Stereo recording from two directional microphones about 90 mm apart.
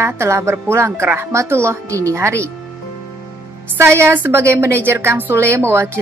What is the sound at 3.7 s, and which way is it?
A woman's voice, 30° right (ahead or behind).